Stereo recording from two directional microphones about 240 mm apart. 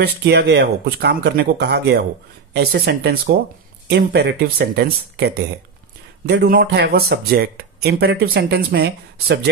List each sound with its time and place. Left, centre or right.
0.0 s speech: right